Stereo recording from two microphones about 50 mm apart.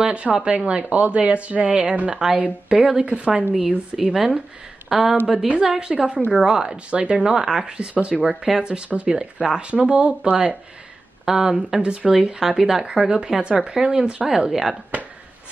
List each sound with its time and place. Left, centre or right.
0.0 s a woman's voice: right
3.9 s a woman's voice: centre; by 7.3 s right
7.3 s a woman's voice: centre
8.2 s speech: centre
8.6 s a woman's voice: right
9.1 s a woman's voice: centre
11.2 s speech: centre
11.8 s a woman's voice: right
12.1 s a woman's voice: centre
14.5 s a woman's voice: centre